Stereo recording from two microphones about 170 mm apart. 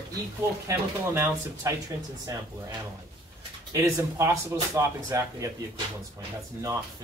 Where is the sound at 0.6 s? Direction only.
15° right (ahead or behind).